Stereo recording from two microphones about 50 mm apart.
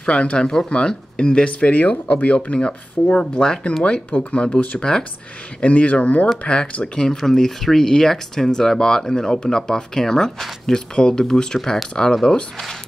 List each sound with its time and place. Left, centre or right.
0.0 s speech: centre
7.1 s speech: centre